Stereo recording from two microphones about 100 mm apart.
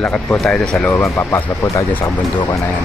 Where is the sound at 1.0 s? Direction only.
25° left (ahead or behind).